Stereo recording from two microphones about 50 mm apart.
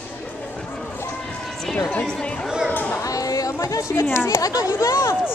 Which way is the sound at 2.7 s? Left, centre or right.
Left.